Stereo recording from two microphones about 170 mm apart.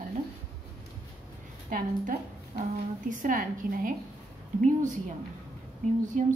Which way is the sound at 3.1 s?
50° right (ahead or behind).